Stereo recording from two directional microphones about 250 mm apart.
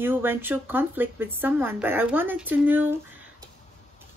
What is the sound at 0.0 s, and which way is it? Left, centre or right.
Speech, centre.